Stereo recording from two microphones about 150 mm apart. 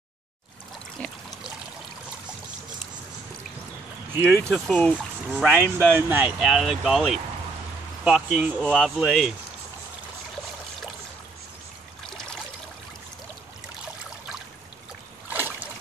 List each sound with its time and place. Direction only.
1.0 s trickle: centre (ahead or behind)
4.1 s speech: 15° right (ahead or behind)
4.5 s speech: centre (ahead or behind)
5.3 s speech: 10° right (ahead or behind)
6.4 s speech: centre (ahead or behind)
15.2 s a sound: 15° right (ahead or behind)